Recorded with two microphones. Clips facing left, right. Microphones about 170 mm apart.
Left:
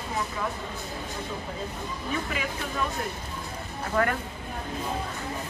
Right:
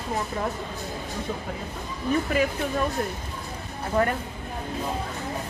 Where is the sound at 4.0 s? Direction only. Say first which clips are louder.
Right 2 dB; 30° right (ahead or behind).